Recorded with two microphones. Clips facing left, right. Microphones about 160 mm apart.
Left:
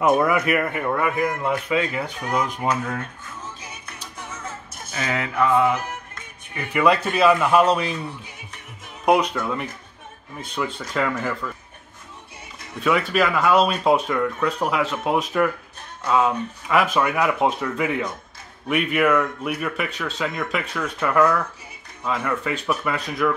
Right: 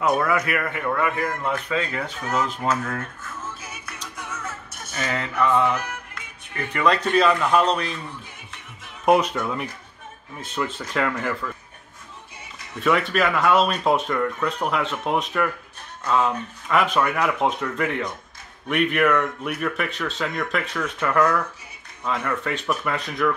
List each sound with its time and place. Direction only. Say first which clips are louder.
0.0 s speech: left 3 dB; 20° left (ahead or behind)
4.2 s music: even; 30° left (ahead or behind)
5.1 s speech: left 2 dB; 10° left (ahead or behind)
9.0 s speech: even; 5° right (ahead or behind)
12.8 s speech: left 1 dB; centre (ahead or behind)